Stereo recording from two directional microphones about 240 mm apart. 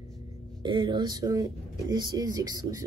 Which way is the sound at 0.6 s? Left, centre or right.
Centre.